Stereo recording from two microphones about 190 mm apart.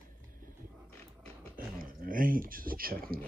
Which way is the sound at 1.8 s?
45° right (ahead or behind).